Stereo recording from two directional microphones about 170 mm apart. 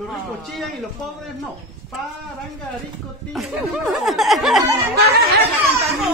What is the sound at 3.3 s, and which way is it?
Speech, centre (ahead or behind).